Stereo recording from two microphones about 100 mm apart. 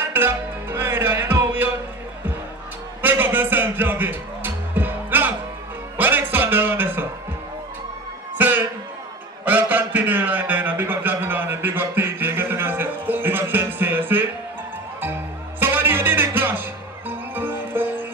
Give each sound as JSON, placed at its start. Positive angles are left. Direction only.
{"t": 0.1, "sound": "music", "side_deg": -20}
{"t": 3.0, "sound": "music", "side_deg": -20}
{"t": 8.4, "sound": "music", "side_deg": -15}
{"t": 9.4, "sound": "a sound", "side_deg": -15}
{"t": 15.6, "sound": "music", "side_deg": -20}